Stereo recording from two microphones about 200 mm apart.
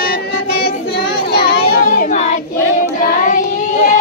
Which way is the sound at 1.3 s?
50° left (ahead or behind).